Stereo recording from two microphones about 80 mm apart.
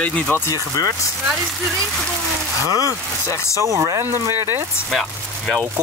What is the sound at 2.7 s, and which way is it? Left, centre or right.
Speech, right.